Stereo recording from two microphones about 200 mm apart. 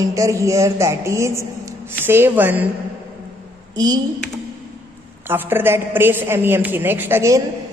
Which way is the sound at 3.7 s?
20° right (ahead or behind).